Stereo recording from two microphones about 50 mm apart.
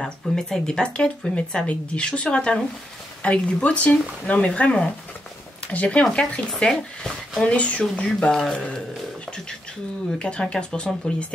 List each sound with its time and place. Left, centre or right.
0.0 s speech: centre
7.4 s speech: left
10.1 s speech: centre